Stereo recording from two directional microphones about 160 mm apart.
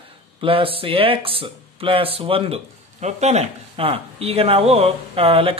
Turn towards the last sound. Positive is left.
turn(degrees=-35)  # may be behind; listen again after turning